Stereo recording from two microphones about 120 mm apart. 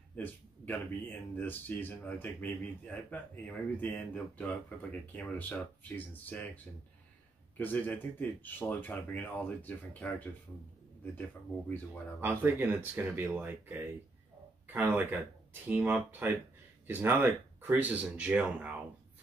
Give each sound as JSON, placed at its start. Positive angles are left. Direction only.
{"t": 0.1, "sound": "speech", "side_deg": 15}
{"t": 12.2, "sound": "speech", "side_deg": -20}